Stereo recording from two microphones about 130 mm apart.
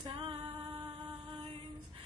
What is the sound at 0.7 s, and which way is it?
Music, 35° right (ahead or behind).